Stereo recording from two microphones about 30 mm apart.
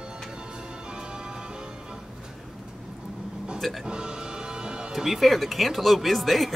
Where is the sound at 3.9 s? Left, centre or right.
Right.